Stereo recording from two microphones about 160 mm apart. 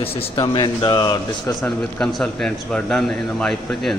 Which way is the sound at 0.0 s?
35° left (ahead or behind).